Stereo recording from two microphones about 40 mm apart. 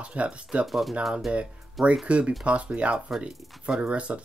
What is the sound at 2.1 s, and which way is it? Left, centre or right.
Speech, right.